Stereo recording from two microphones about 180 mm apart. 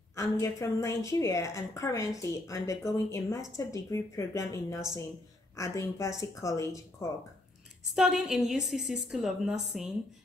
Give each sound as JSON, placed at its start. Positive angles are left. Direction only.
{"t": 0.1, "sound": "a woman's voice", "side_deg": 15}
{"t": 7.9, "sound": "a woman's voice", "side_deg": 0}